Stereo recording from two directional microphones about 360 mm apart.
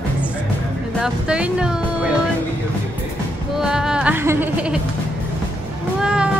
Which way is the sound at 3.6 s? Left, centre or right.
Centre.